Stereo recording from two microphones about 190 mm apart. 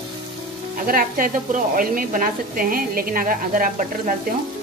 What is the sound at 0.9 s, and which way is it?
A woman's voice, 45° right (ahead or behind).